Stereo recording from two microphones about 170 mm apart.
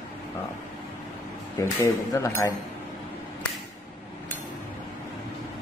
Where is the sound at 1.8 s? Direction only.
15° left (ahead or behind).